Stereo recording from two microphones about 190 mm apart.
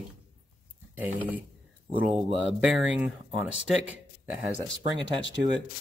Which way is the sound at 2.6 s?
5° right (ahead or behind).